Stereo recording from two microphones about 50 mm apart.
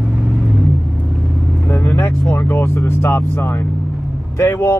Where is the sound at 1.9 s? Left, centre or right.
Left.